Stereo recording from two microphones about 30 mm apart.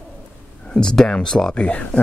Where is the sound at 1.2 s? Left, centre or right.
Left.